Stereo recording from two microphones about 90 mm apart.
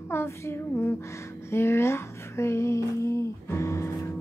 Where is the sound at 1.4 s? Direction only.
30° left (ahead or behind).